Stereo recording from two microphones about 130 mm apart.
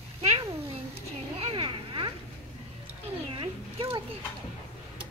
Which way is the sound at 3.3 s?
45° right (ahead or behind).